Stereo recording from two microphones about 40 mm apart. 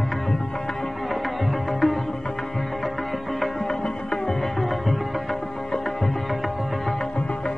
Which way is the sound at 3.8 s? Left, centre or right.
Left.